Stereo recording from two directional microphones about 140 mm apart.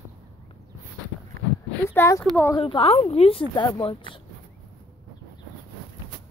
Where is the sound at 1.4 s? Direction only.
90° right.